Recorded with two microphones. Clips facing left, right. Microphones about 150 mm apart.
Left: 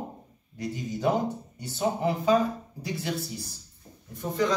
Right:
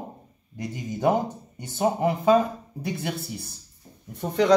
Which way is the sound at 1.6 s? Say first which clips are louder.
Right 5 dB; 50° right (ahead or behind).